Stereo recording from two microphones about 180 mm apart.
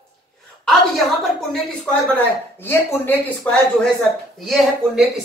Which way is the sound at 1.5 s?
5° left (ahead or behind).